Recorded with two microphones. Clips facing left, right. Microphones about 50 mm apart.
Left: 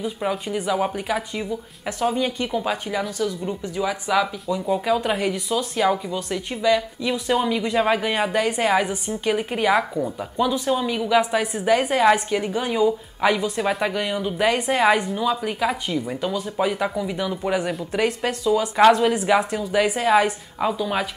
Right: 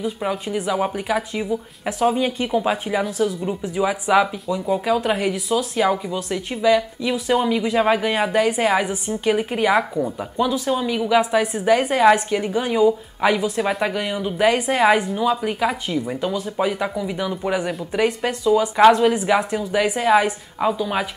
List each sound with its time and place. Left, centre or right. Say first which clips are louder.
0.0 s speech: right 1 dB; centre
4.5 s speech: right 1 dB; centre